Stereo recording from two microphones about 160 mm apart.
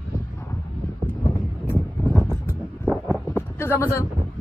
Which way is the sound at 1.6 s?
15° left (ahead or behind).